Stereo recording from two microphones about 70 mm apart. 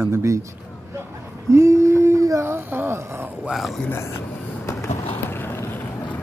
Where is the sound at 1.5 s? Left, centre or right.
Right.